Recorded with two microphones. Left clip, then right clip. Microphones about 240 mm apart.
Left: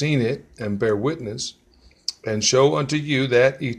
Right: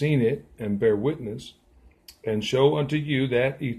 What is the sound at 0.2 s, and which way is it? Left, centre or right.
Speech, centre.